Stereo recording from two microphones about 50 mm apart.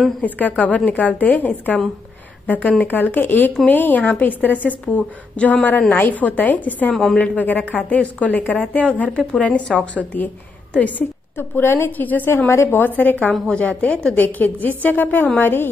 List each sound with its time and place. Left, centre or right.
0.2 s a woman's voice: left
6.9 s a woman's voice: centre
7.2 s a woman's voice: left
9.7 s a woman's voice: centre
10.1 s a woman's voice: left
11.3 s a woman's voice: left
12.0 s a woman's voice: left